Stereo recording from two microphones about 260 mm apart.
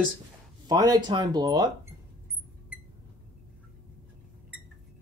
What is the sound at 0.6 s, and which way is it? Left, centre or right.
Speech, centre.